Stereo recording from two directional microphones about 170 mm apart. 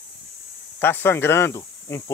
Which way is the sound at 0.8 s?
10° left (ahead or behind).